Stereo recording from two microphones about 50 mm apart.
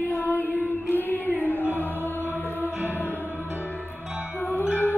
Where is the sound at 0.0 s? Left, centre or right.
Left.